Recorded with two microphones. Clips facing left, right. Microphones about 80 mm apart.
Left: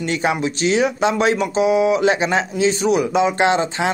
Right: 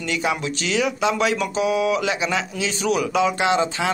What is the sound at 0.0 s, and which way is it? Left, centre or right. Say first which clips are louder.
Speech: left 4 dB; left.